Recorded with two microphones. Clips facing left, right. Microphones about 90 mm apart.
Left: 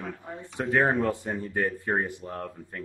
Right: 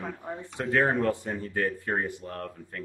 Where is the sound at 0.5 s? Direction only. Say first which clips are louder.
Left 1 dB; 15° left (ahead or behind).